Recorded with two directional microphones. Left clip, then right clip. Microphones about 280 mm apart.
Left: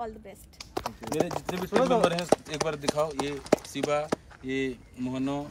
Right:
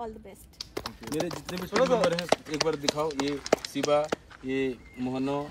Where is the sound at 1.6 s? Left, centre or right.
Left.